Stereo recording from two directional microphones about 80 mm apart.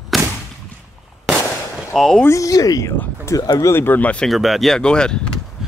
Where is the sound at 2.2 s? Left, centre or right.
Left.